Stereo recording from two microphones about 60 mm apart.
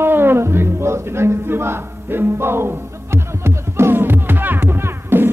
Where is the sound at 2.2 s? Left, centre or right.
Right.